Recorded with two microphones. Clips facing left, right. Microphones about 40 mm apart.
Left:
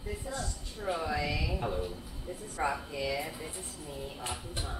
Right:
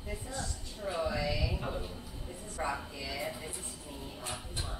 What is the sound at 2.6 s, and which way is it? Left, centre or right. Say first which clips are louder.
Speech: left 3 dB; left.